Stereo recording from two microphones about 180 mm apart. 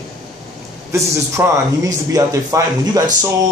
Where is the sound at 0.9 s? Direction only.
15° right (ahead or behind).